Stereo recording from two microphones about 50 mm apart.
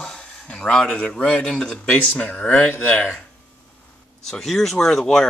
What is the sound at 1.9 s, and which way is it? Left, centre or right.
Speech, left.